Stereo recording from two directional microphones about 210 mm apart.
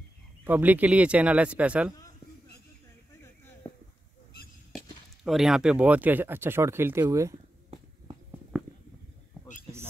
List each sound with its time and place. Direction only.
0.5 s speech: 10° right (ahead or behind)
4.7 s speech: centre (ahead or behind)